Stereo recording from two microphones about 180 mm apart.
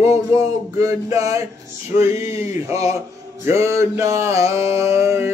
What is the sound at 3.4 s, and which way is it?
Speech, 15° right (ahead or behind).